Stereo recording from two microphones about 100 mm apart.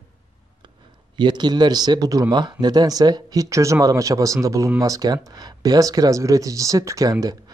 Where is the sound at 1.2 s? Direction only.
50° right (ahead or behind).